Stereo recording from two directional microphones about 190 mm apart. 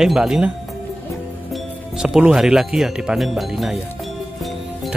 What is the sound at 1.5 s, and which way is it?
Speech, 5° right (ahead or behind).